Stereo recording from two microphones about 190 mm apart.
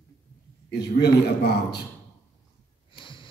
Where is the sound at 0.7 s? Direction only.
60° left (ahead or behind).